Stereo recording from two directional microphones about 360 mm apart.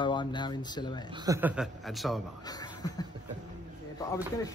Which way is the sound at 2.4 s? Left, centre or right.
Centre.